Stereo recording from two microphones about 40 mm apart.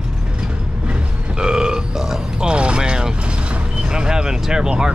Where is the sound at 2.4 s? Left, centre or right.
Right.